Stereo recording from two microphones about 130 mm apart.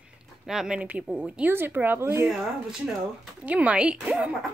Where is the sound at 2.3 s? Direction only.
Centre (ahead or behind).